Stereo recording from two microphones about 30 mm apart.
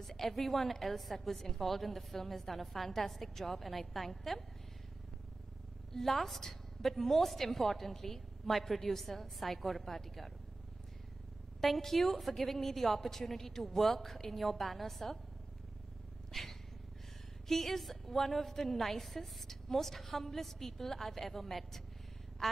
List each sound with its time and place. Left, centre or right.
0.0 s a sound: centre
0.3 s a woman's voice: centre
5.9 s a woman's voice: centre
11.6 s a woman's voice: centre
16.3 s cat: centre
17.5 s a woman's voice: centre